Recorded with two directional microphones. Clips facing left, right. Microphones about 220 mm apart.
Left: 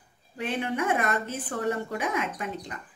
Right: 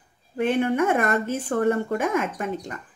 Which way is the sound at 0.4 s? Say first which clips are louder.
Right 8 dB; 50° right (ahead or behind).